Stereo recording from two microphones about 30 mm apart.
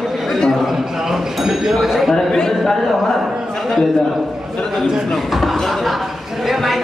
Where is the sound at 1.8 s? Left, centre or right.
Centre.